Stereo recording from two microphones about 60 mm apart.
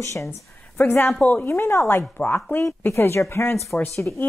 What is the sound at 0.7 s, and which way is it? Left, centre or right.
Speech, left.